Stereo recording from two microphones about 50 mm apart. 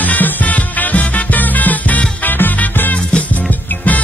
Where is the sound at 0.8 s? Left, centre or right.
Left.